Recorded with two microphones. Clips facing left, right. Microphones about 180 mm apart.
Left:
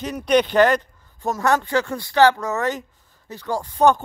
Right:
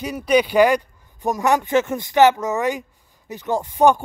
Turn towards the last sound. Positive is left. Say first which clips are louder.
# right 1 dB
turn(degrees=-15)  # may be behind; listen again after turning